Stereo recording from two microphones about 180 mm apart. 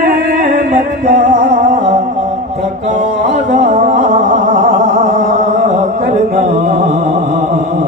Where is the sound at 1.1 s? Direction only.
45° right (ahead or behind).